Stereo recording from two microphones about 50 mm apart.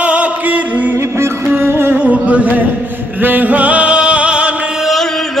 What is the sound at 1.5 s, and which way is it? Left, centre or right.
Music, right.